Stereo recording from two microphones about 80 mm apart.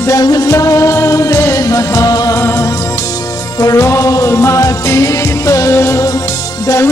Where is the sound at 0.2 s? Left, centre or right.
Left.